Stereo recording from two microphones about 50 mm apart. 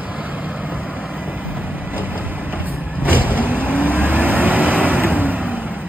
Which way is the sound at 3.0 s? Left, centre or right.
Right.